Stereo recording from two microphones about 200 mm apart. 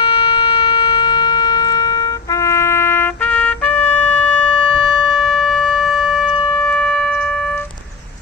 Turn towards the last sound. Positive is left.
turn(degrees=5)  # may be behind; listen again after turning